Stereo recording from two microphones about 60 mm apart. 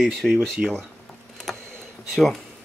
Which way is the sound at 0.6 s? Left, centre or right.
Centre.